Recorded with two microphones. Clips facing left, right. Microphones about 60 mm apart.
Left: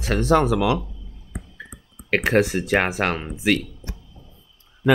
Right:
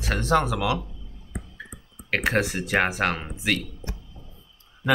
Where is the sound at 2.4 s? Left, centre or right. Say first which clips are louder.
Left 4 dB; centre.